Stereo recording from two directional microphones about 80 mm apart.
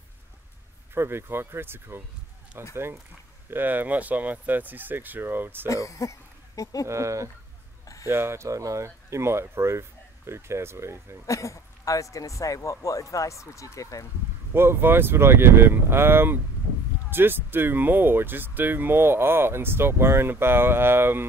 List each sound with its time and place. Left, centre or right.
0.9 s speech: right
5.7 s speech: left
6.9 s speech: right
7.8 s a sound: left
8.1 s speech: right
11.2 s speech: left
14.5 s speech: right